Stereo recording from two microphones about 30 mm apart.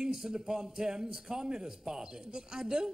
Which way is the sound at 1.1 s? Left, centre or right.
Centre.